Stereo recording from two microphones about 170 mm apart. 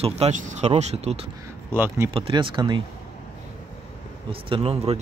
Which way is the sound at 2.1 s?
30° right (ahead or behind).